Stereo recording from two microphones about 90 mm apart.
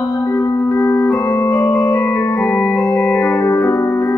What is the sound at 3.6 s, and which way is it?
Music, 25° left (ahead or behind).